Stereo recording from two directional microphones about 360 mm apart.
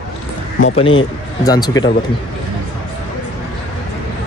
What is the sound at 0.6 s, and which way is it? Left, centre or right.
Speech, centre.